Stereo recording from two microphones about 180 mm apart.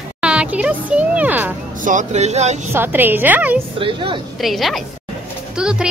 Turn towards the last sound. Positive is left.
turn(degrees=-5)  # may be behind; listen again after turning